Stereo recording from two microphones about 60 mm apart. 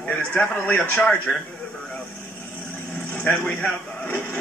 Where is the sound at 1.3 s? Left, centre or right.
Centre.